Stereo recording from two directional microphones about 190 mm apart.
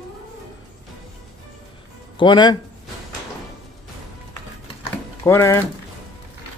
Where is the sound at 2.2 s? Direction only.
25° left (ahead or behind).